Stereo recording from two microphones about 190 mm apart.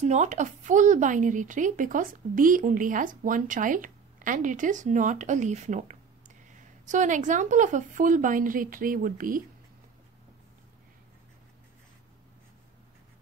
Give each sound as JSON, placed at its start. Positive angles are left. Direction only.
{"t": 0.0, "sound": "speech", "side_deg": -35}